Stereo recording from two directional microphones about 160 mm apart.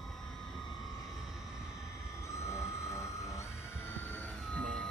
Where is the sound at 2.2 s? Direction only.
20° left (ahead or behind).